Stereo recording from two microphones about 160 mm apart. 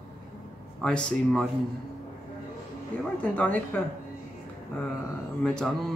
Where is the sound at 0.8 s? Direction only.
5° left (ahead or behind).